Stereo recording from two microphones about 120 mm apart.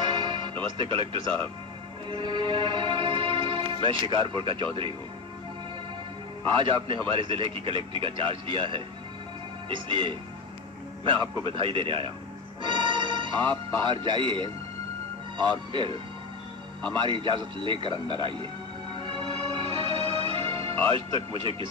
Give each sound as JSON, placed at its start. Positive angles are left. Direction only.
{"t": 0.0, "sound": "music", "side_deg": -40}
{"t": 2.0, "sound": "speech", "side_deg": -40}
{"t": 6.5, "sound": "a man's voice", "side_deg": -45}
{"t": 11.1, "sound": "a man's voice", "side_deg": -45}
{"t": 17.0, "sound": "a man's voice", "side_deg": -45}
{"t": 19.8, "sound": "music", "side_deg": -50}